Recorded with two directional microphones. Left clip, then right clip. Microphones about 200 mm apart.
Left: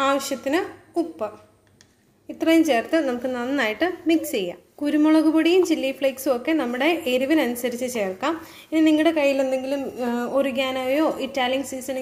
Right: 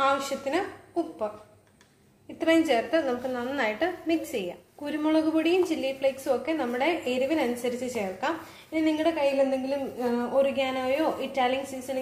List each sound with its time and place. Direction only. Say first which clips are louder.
0.0 s a woman's voice: left 3 dB; 45° left (ahead or behind)
2.3 s a woman's voice: left 4 dB; 35° left (ahead or behind)